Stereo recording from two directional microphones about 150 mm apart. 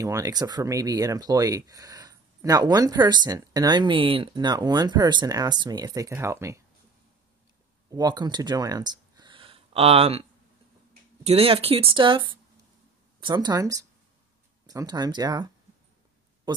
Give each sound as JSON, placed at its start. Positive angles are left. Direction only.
{"t": 0.0, "sound": "speech", "side_deg": -20}
{"t": 7.9, "sound": "speech", "side_deg": -25}
{"t": 11.2, "sound": "speech", "side_deg": -40}
{"t": 16.5, "sound": "speech", "side_deg": -30}